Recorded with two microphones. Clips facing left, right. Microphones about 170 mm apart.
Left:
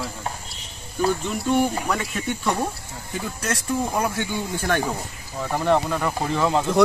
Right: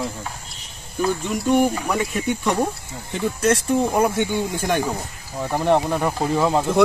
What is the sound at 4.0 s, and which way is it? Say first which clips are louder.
Speech: right 6 dB; 15° right (ahead or behind).